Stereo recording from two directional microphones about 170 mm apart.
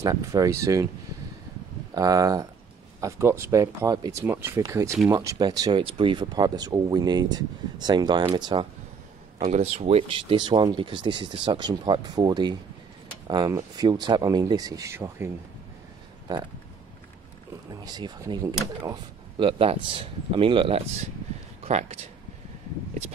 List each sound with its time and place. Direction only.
0.0 s speech: 20° right (ahead or behind)
2.0 s speech: 20° right (ahead or behind)
9.4 s speech: 40° right (ahead or behind); by 15.2 s 15° right (ahead or behind)
17.6 s speech: 25° right (ahead or behind)